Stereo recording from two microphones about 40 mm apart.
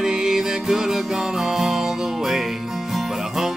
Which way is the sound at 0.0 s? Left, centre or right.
Centre.